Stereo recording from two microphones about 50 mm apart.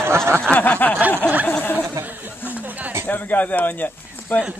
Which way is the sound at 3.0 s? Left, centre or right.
Left.